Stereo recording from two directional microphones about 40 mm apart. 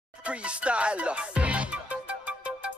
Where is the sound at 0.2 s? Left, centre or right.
Right.